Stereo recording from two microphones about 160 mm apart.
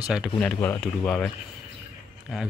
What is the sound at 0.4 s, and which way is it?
Speech, 10° left (ahead or behind).